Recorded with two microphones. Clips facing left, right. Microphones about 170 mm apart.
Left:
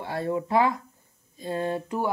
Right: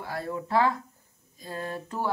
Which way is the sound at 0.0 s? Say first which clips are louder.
Left 5 dB; 25° left (ahead or behind).